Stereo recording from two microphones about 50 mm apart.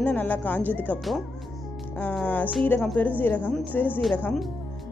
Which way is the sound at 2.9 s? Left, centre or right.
Left.